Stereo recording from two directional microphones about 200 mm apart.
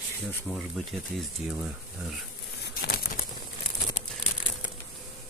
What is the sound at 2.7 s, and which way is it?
Crumpling, 50° left (ahead or behind).